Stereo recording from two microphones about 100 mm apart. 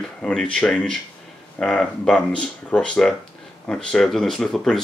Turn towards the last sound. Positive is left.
turn(degrees=5)  # may be behind; listen again after turning